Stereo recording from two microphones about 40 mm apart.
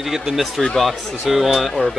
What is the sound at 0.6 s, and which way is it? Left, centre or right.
Speech, centre.